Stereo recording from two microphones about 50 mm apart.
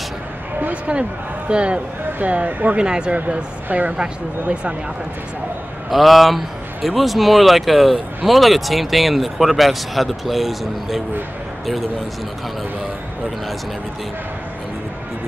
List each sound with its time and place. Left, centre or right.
1.5 s speech: right
2.8 s speech: centre
3.6 s a woman's voice: right
3.9 s speech: right
5.9 s speech: centre